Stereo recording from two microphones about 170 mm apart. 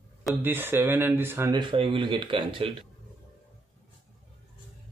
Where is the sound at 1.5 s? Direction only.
25° right (ahead or behind).